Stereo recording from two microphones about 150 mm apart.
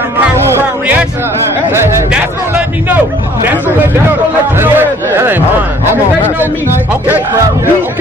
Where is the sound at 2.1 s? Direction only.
10° right (ahead or behind).